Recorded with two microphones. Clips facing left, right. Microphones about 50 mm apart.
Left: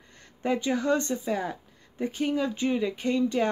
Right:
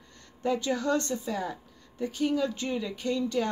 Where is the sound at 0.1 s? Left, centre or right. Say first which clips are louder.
Left 1 dB; left.